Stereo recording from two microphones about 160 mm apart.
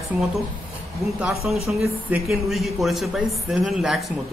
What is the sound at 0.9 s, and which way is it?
Speech, centre (ahead or behind).